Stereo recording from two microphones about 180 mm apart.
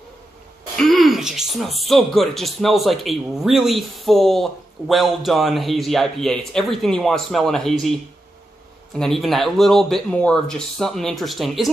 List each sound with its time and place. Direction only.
0.7 s speech: centre (ahead or behind)
8.9 s speech: centre (ahead or behind)